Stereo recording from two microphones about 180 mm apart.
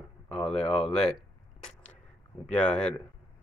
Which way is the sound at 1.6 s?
5° left (ahead or behind).